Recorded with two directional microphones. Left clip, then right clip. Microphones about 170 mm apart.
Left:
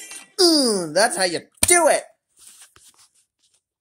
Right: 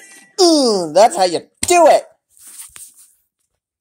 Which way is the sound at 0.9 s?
5° left (ahead or behind).